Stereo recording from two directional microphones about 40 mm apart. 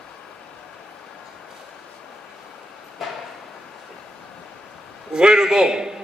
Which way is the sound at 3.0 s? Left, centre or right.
Centre.